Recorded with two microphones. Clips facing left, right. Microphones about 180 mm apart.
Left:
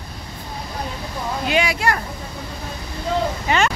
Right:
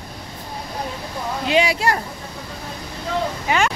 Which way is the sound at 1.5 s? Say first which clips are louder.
Right 2 dB; 30° right (ahead or behind).